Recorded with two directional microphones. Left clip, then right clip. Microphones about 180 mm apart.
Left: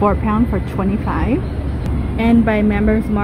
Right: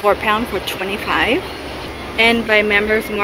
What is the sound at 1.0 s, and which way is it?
Speech, 10° right (ahead or behind).